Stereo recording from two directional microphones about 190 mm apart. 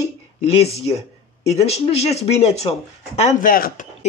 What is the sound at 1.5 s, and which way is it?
Speech, 35° left (ahead or behind).